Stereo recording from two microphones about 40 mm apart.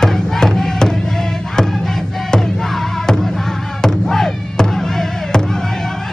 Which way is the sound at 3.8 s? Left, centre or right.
Centre.